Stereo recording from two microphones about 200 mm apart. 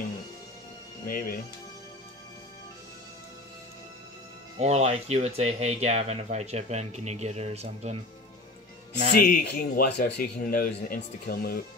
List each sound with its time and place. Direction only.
1.0 s a man's voice: 45° left (ahead or behind)
4.6 s speech: 35° right (ahead or behind)
9.2 s a man's voice: 50° left (ahead or behind)